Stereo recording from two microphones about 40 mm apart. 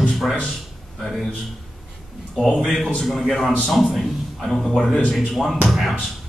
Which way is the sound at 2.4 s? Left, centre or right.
Centre.